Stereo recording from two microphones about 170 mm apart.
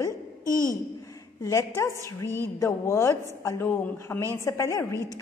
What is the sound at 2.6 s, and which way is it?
A woman's voice, 15° left (ahead or behind).